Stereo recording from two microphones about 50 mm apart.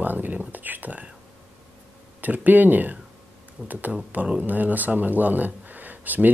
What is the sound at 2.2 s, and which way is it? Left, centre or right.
Speech, right.